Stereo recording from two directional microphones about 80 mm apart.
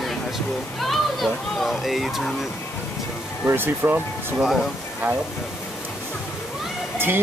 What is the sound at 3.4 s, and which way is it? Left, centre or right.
Speech, right.